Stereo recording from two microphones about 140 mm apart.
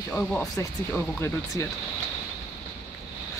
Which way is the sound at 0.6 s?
20° left (ahead or behind).